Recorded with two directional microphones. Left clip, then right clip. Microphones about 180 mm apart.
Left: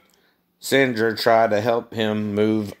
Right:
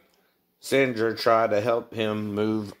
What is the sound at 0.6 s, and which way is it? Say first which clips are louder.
Speech: left 4 dB; 40° left (ahead or behind).